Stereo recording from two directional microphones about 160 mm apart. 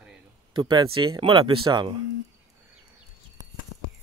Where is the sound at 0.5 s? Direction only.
30° right (ahead or behind).